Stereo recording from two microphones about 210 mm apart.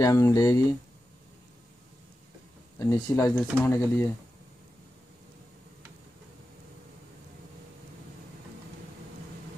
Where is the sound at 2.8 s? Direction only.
15° left (ahead or behind).